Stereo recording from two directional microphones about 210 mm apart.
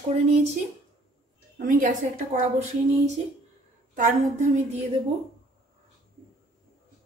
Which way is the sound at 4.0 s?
40° right (ahead or behind).